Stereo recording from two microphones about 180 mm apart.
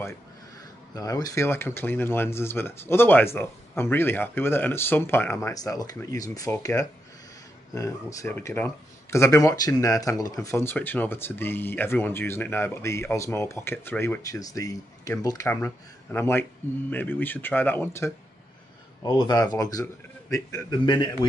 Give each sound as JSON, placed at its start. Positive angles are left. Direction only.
{"t": 0.9, "sound": "a man's voice", "side_deg": 20}